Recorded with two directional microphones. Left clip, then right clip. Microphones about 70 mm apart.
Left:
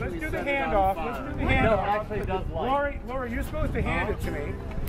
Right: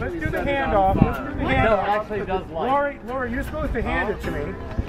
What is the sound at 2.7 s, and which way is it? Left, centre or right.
Speech, centre.